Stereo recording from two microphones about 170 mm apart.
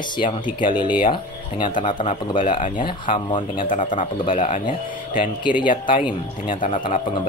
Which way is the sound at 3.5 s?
50° left (ahead or behind).